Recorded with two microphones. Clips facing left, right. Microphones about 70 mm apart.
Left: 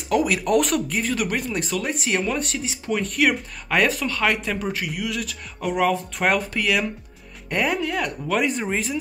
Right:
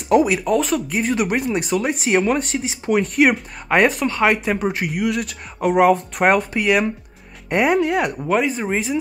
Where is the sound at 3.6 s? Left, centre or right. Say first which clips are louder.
Right 5 dB; right.